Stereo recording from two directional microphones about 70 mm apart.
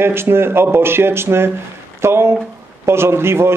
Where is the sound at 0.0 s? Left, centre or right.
Right.